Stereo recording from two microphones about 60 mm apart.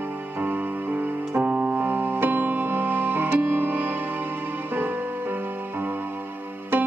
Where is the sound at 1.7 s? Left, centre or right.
Right.